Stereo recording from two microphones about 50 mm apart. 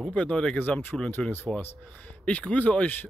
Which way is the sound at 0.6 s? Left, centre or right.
Left.